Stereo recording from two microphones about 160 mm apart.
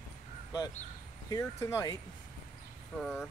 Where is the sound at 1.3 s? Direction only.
15° left (ahead or behind).